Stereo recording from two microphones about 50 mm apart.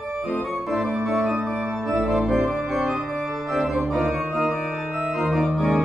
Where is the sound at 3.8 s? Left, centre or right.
Centre.